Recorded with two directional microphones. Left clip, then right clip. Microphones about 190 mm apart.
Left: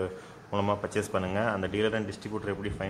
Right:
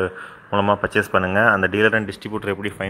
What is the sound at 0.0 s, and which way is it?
A man's voice, 20° right (ahead or behind).